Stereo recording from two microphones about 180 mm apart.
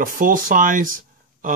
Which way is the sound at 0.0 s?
50° right (ahead or behind).